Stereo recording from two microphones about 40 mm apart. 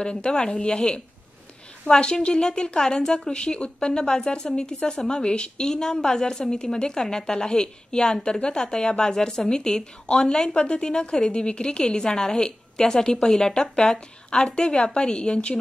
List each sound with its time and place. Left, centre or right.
0.0 s speech: left
3.3 s speech: left